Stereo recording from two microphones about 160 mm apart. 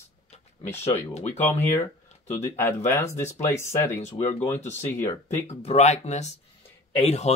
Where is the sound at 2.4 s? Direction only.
15° left (ahead or behind).